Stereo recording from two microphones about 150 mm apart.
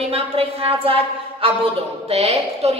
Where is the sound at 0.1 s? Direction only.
40° right (ahead or behind).